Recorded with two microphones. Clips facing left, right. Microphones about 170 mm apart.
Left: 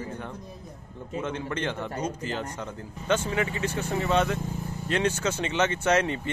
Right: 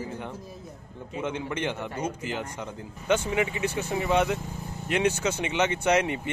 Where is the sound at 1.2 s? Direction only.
15° right (ahead or behind).